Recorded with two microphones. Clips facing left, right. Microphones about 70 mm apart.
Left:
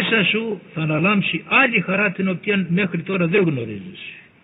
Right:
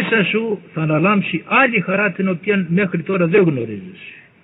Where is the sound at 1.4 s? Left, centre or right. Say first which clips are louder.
Right 3 dB; centre.